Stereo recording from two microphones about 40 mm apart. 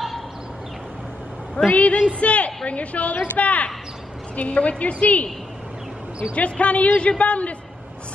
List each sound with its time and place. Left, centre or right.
1.7 s a woman's voice: left
6.3 s a woman's voice: left